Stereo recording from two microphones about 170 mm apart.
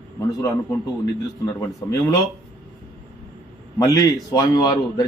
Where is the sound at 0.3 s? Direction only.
20° left (ahead or behind).